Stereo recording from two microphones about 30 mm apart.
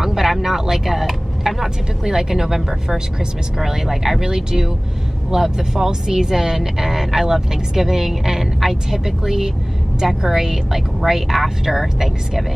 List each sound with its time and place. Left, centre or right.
0.0 s speech: centre
4.2 s speech: centre